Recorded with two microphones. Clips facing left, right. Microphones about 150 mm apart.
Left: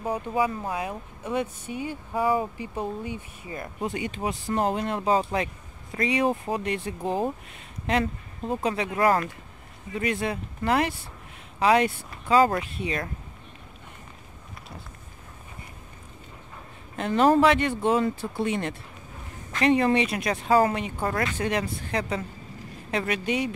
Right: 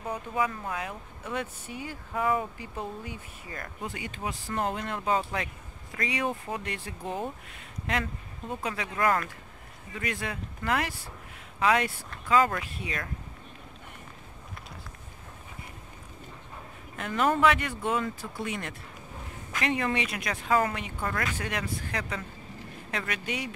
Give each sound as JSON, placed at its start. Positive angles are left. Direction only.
{"t": 0.0, "sound": "speech", "side_deg": 30}
{"t": 16.9, "sound": "speech", "side_deg": 30}